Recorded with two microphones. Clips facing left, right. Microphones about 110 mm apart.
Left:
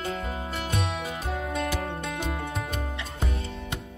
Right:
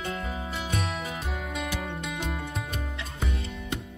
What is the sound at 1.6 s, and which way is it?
Music, 45° left (ahead or behind).